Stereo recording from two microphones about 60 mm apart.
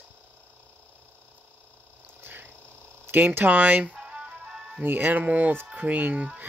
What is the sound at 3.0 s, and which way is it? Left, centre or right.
Speech, right.